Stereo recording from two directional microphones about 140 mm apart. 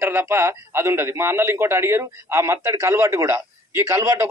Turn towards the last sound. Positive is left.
turn(degrees=-20)  # may be behind; listen again after turning